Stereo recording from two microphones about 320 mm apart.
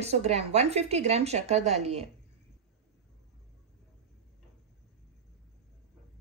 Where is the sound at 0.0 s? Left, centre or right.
Centre.